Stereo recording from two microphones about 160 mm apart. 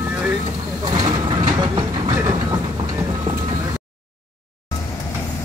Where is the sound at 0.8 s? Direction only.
25° right (ahead or behind).